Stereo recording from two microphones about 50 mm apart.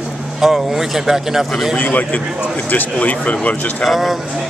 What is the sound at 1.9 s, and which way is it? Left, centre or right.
Speech, left.